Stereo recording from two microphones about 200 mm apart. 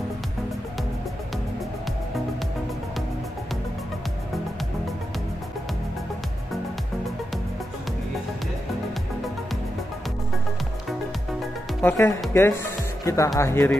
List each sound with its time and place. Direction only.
11.8 s speech: 10° left (ahead or behind)